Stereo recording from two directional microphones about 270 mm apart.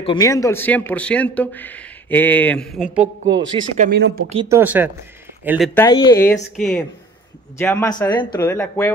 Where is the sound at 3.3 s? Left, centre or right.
Centre.